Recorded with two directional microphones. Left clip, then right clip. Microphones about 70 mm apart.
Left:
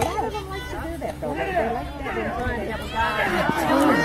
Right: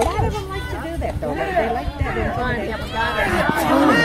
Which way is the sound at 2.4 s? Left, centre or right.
Right.